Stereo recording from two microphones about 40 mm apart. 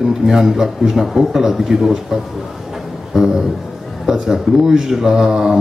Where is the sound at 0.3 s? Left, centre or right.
Centre.